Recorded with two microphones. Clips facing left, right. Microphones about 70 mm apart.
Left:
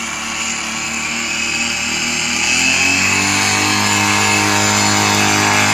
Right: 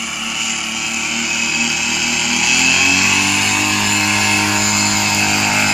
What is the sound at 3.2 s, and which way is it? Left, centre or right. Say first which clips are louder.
Vehicle: left 1 dB; left.